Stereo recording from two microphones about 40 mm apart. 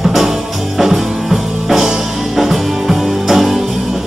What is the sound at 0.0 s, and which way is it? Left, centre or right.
Music, centre.